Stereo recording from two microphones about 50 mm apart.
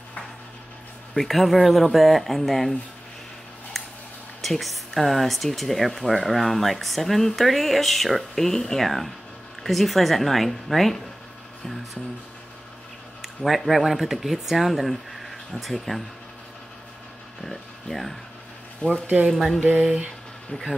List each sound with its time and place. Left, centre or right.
1.1 s speech: centre
3.8 s a sound: centre
4.4 s speech: centre
13.2 s speech: centre
17.4 s speech: centre
18.8 s speech: left
19.2 s speech: centre